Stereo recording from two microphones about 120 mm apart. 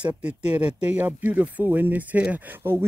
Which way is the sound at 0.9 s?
15° right (ahead or behind).